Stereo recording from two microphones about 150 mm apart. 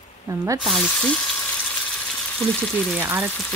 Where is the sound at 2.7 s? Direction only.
10° left (ahead or behind).